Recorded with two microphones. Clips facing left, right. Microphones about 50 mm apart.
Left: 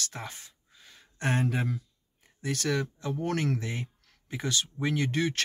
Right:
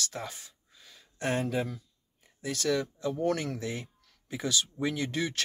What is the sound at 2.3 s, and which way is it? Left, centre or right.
Speech, left.